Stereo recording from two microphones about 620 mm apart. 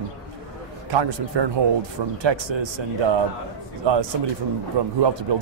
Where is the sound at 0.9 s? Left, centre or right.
Right.